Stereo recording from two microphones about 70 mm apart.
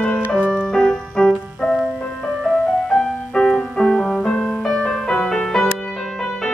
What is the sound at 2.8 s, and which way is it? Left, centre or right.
Music, centre.